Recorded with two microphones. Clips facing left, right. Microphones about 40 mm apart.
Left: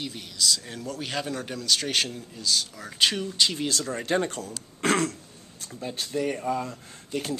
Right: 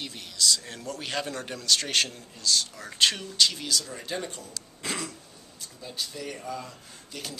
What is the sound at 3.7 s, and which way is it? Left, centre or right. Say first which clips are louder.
Speech: left 5 dB; left.